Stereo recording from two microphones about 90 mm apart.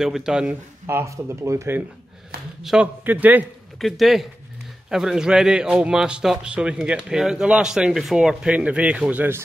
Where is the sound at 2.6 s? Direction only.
5° right (ahead or behind).